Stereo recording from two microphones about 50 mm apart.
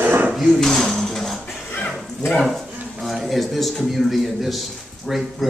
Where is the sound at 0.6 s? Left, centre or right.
Centre.